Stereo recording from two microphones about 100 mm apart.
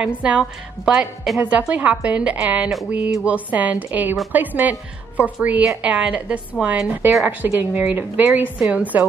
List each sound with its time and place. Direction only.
0.2 s a woman's voice: 10° right (ahead or behind)